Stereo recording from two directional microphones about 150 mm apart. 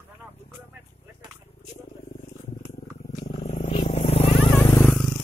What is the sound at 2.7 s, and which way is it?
Purr, 45° left (ahead or behind).